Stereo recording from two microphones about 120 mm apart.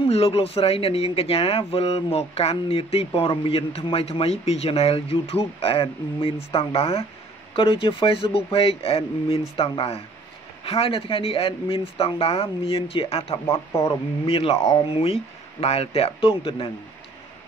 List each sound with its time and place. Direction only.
0.0 s speech: 55° left (ahead or behind)